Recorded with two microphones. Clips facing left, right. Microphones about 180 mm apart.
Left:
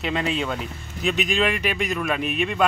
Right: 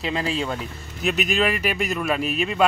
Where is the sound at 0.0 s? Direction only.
Centre (ahead or behind).